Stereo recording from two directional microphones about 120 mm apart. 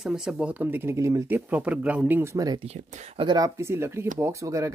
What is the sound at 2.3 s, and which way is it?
Speech, 30° right (ahead or behind).